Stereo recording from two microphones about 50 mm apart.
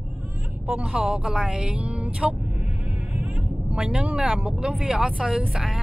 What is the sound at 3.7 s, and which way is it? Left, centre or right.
Speech, right.